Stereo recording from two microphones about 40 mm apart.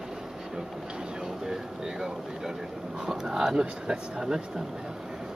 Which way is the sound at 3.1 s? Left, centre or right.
Centre.